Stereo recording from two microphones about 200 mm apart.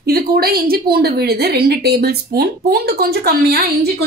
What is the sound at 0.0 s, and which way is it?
A woman's voice, 50° right (ahead or behind).